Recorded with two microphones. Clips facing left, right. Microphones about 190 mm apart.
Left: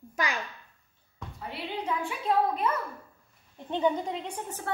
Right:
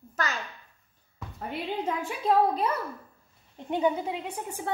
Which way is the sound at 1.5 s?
40° right (ahead or behind).